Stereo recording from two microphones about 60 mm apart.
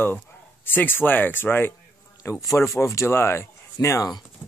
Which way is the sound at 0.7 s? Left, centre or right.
Left.